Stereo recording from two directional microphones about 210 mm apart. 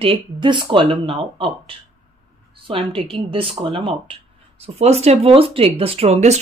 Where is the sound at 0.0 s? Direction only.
25° right (ahead or behind).